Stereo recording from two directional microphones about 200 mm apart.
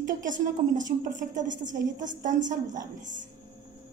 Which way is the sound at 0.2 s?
40° right (ahead or behind).